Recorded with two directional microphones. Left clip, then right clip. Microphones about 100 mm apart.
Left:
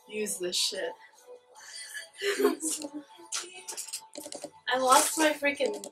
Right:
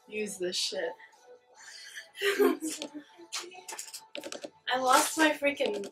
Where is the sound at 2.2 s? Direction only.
15° right (ahead or behind).